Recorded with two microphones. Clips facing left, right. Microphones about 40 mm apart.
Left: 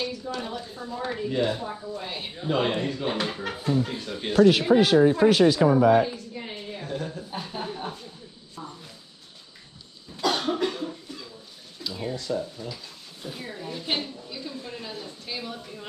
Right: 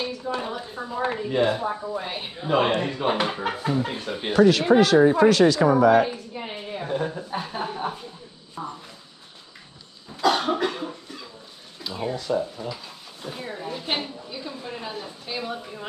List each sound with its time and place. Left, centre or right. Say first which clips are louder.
0.0 s speech: right 3 dB; right
4.7 s speech: right 5 dB; right
5.0 s speech: right 2 dB; centre
5.7 s speech: right 2 dB; centre
6.0 s speech: right 3 dB; right
7.2 s speech: right 4 dB; centre
8.6 s speech: right 6 dB; right
10.3 s speech: right 2 dB; centre